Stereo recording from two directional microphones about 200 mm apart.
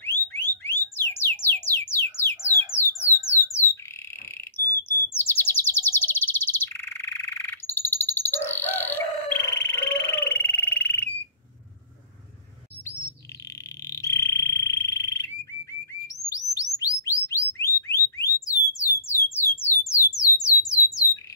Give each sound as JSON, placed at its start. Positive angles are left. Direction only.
{"t": 0.0, "sound": "a sound", "side_deg": 10}
{"t": 3.6, "sound": "bird", "side_deg": -15}
{"t": 4.6, "sound": "chirp", "side_deg": 10}
{"t": 13.8, "sound": "frog", "side_deg": 15}
{"t": 16.7, "sound": "bird", "side_deg": 15}
{"t": 18.8, "sound": "alarm", "side_deg": 15}
{"t": 19.3, "sound": "a sound", "side_deg": 10}
{"t": 20.2, "sound": "squawk", "side_deg": 15}